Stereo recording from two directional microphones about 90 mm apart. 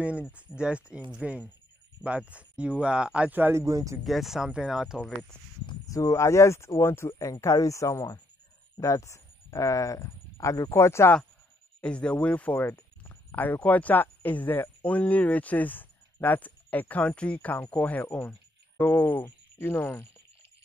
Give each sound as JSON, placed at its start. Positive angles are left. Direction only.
{"t": 0.6, "sound": "speech", "side_deg": -10}
{"t": 3.6, "sound": "speech", "side_deg": -35}
{"t": 4.0, "sound": "speech", "side_deg": 0}
{"t": 5.9, "sound": "speech", "side_deg": 35}
{"t": 11.8, "sound": "speech", "side_deg": 10}